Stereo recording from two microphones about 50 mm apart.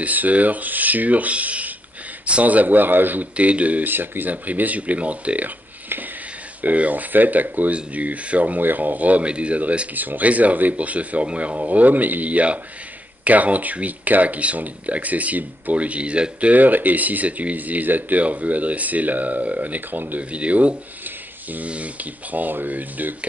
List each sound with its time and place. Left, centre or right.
0.0 s speech: right
3.3 s speech: right
3.9 s speech: right
6.6 s speech: right